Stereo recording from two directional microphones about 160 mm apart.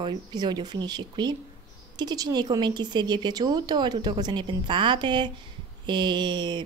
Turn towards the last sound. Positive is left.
turn(degrees=-30)  # may be behind; listen again after turning